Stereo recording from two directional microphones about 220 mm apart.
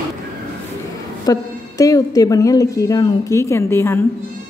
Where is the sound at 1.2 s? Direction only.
15° left (ahead or behind).